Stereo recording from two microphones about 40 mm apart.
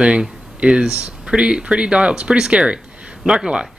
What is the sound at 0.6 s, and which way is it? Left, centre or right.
Speech, right.